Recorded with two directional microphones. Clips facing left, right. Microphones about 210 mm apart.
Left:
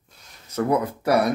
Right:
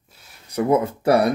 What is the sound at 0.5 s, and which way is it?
Speech, 20° right (ahead or behind).